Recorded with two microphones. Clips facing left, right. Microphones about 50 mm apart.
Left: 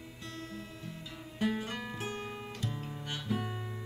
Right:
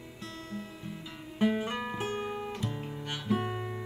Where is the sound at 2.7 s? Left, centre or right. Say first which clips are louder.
Right 3 dB; centre.